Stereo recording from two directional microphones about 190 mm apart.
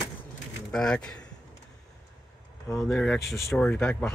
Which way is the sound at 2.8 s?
Centre (ahead or behind).